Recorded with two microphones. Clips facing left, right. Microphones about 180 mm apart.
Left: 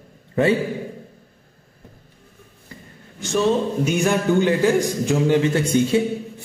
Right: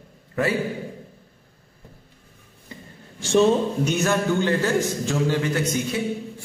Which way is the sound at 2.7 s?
20° right (ahead or behind).